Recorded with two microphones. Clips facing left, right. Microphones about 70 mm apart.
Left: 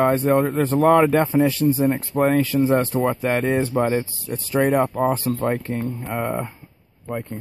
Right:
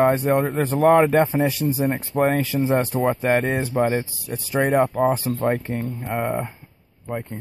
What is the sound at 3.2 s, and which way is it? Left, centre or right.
Speech, centre.